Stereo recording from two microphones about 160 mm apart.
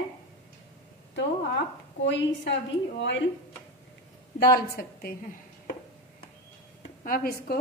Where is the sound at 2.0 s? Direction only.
90° left.